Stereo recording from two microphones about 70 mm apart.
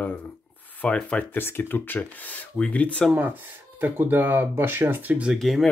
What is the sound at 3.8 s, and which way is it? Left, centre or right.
Speech, right.